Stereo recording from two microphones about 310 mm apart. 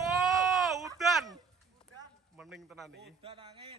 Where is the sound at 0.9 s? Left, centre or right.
Centre.